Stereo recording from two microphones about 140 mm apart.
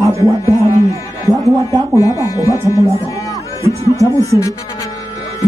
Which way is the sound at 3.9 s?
20° left (ahead or behind).